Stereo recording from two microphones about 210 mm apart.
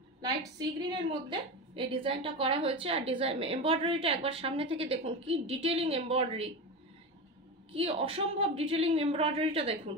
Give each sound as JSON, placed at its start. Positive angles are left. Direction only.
{"t": 0.2, "sound": "a woman's voice", "side_deg": -20}
{"t": 7.7, "sound": "a woman's voice", "side_deg": -30}